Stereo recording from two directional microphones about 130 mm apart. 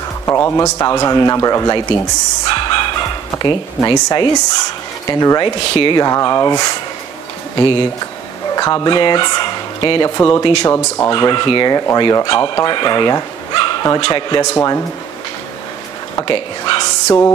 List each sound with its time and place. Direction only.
0.2 s a man's voice: 20° left (ahead or behind)
10.1 s a man's voice: 25° left (ahead or behind)
11.1 s a man's voice: 35° left (ahead or behind)
16.2 s speech: 40° left (ahead or behind)